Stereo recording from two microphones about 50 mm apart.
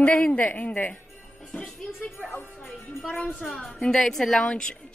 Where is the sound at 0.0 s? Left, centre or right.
Left.